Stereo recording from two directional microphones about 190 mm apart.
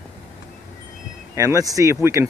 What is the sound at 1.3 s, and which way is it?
Speech, 15° right (ahead or behind).